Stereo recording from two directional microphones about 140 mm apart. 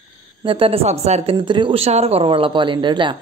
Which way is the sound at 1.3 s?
35° right (ahead or behind).